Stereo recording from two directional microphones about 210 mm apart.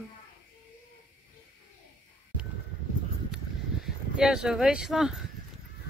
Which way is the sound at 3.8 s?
5° right (ahead or behind).